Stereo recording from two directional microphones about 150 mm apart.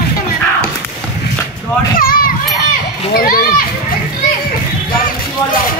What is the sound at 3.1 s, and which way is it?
Children playing, 75° left (ahead or behind).